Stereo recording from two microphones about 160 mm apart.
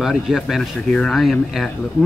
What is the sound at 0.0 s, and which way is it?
Speech, centre (ahead or behind).